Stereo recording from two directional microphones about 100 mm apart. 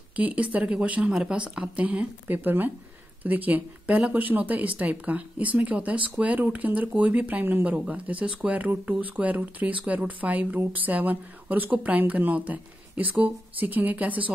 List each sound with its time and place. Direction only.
0.1 s speech: 15° right (ahead or behind)